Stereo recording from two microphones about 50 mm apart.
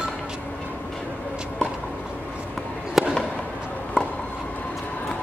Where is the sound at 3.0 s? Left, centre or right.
Centre.